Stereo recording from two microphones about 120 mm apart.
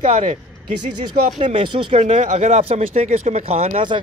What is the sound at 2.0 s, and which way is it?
Speech, 70° right (ahead or behind).